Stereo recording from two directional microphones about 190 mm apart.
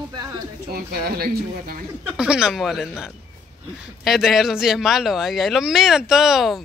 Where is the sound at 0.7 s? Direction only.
50° right (ahead or behind).